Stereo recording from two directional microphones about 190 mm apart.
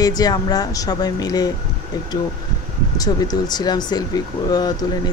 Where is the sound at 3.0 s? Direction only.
20° left (ahead or behind).